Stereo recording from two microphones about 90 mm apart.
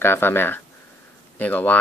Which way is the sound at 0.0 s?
25° left (ahead or behind).